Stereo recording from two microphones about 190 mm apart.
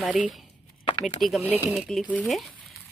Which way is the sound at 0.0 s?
Centre (ahead or behind).